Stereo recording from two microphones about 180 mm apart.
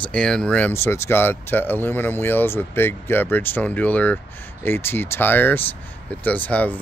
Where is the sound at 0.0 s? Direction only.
5° left (ahead or behind).